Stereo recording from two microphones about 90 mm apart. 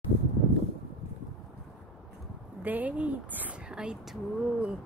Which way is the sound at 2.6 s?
20° right (ahead or behind).